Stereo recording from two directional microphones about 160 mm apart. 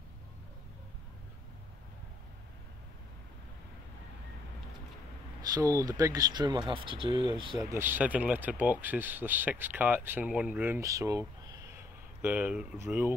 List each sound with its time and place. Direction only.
5.5 s speech: 20° right (ahead or behind)
7.7 s speech: 10° right (ahead or behind)